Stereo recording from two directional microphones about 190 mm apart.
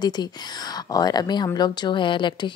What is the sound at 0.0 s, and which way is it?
A woman's voice, 20° left (ahead or behind).